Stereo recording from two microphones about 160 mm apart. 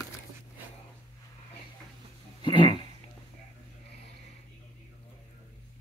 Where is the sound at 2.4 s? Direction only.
30° left (ahead or behind).